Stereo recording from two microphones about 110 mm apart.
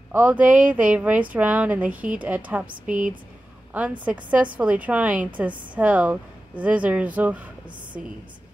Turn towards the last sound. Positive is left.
turn(degrees=-15)  # may be behind; listen again after turning